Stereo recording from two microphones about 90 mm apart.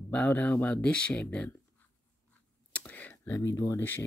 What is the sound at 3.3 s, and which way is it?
Speech, 35° left (ahead or behind).